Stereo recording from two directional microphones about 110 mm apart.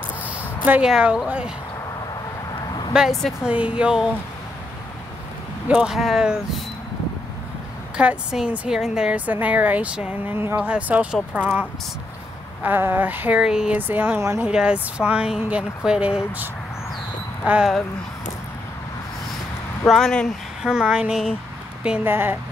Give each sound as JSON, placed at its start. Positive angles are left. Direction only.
{"t": 0.2, "sound": "a sound", "side_deg": -15}
{"t": 0.8, "sound": "speech", "side_deg": -5}
{"t": 2.9, "sound": "speech", "side_deg": -5}
{"t": 3.4, "sound": "a woman's voice", "side_deg": -10}
{"t": 5.7, "sound": "speech", "side_deg": -5}
{"t": 8.0, "sound": "a woman's voice", "side_deg": -10}
{"t": 12.6, "sound": "a woman's voice", "side_deg": -20}
{"t": 14.4, "sound": "a woman's voice", "side_deg": -10}
{"t": 17.5, "sound": "speech", "side_deg": -5}
{"t": 19.9, "sound": "speech", "side_deg": 5}
{"t": 20.6, "sound": "a woman's voice", "side_deg": -5}